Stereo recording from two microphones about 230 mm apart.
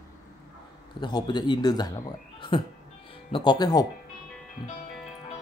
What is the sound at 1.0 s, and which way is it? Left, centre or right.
Speech, centre.